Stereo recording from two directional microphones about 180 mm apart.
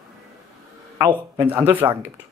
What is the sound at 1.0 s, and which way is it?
Speech, 15° right (ahead or behind).